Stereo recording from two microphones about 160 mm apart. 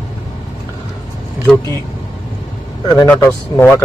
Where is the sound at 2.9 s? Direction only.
15° left (ahead or behind).